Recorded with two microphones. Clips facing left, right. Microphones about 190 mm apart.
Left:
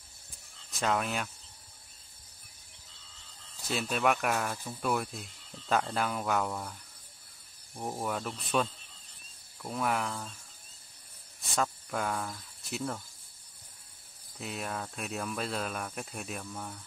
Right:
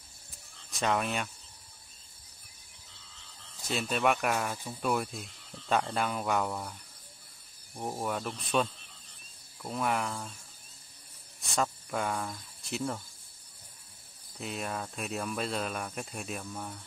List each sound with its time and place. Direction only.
0.7 s speech: centre (ahead or behind)
3.6 s speech: centre (ahead or behind)
11.5 s speech: centre (ahead or behind)
14.4 s speech: centre (ahead or behind)